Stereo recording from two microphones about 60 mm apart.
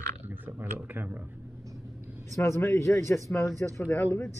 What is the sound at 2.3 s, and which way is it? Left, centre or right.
Speech, left.